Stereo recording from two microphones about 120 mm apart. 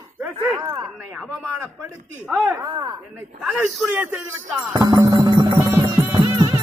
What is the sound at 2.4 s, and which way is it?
Music, 20° right (ahead or behind).